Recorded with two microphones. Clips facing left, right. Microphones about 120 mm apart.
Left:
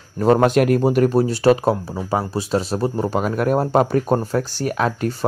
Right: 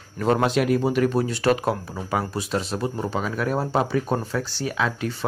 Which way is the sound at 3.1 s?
50° left (ahead or behind).